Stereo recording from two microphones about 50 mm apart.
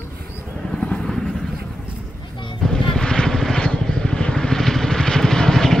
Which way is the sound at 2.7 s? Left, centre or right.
Centre.